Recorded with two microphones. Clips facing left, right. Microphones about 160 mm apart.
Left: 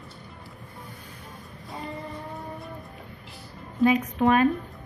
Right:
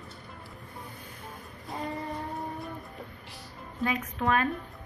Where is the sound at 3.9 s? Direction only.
20° left (ahead or behind).